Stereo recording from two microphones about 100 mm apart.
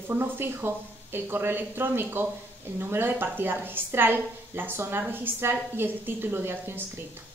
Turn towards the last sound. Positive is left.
turn(degrees=-20)  # may be behind; listen again after turning